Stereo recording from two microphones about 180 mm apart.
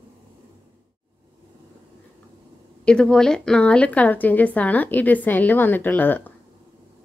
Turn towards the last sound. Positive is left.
turn(degrees=10)  # may be behind; listen again after turning